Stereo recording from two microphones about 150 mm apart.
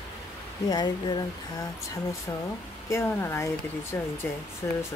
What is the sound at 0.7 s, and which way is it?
Speech, 30° left (ahead or behind).